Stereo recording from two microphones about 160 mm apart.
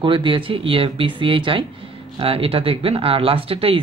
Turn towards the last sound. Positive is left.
turn(degrees=-35)  # may be behind; listen again after turning